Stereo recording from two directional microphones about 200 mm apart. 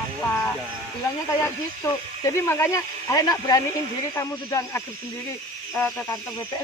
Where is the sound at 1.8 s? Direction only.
15° left (ahead or behind).